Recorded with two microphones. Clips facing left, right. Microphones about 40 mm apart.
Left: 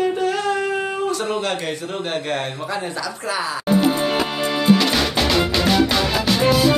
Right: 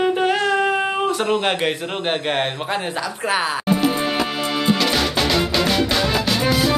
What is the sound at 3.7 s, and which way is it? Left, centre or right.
Music, centre.